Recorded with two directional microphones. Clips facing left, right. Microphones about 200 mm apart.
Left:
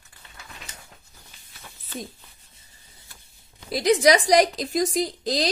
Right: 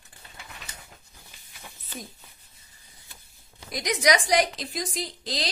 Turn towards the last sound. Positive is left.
turn(degrees=45)  # may be behind; listen again after turning